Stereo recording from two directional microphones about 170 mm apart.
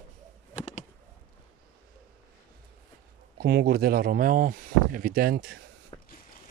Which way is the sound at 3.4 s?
70° right (ahead or behind).